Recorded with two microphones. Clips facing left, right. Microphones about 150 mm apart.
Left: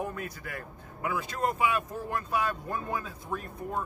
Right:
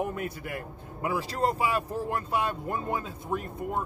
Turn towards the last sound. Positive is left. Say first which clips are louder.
# right 3 dB
turn(degrees=-20)  # may be behind; listen again after turning